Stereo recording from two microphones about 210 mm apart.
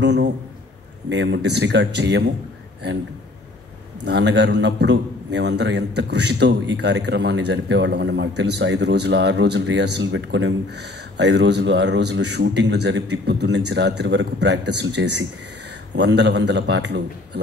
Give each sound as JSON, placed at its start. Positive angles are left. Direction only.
{"t": 0.0, "sound": "a man's voice", "side_deg": -55}
{"t": 4.0, "sound": "a man's voice", "side_deg": -55}